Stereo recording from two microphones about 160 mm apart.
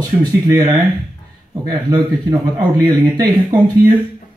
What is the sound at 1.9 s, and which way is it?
Speech, 25° right (ahead or behind).